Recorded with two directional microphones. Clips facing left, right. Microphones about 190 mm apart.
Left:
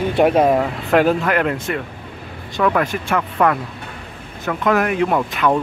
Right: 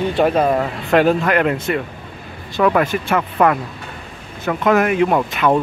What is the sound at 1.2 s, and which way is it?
Speech, 5° right (ahead or behind).